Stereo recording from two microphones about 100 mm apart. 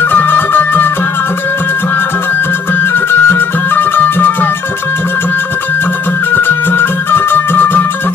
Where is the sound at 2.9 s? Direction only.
20° left (ahead or behind).